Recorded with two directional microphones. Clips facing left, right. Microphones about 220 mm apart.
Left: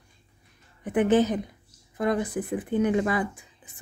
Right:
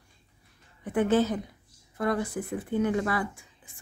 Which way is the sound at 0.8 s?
20° left (ahead or behind).